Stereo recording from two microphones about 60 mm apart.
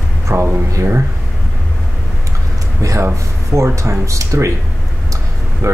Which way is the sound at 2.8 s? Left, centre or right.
Right.